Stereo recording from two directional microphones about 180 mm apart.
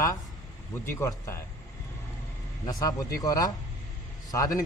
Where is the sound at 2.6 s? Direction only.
20° left (ahead or behind).